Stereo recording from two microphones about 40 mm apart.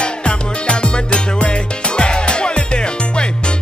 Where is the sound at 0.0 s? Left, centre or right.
Left.